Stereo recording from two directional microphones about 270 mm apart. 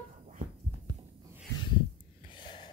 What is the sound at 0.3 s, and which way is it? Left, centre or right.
Heart sounds, right.